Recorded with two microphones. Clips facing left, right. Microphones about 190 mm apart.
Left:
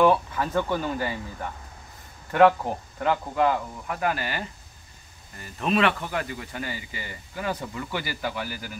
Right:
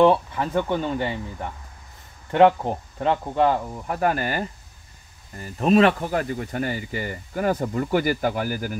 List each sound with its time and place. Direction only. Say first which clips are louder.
0.0 s speech: right 3 dB; 25° right (ahead or behind); by 8.7 s 45° right (ahead or behind)